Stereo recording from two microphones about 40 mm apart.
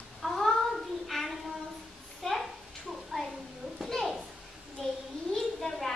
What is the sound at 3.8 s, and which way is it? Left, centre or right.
Children playing, centre.